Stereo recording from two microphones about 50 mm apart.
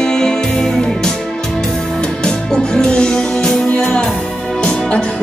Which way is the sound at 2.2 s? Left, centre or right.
Centre.